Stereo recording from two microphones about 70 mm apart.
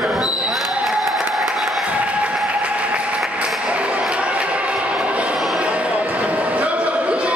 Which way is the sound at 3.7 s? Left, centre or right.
Centre.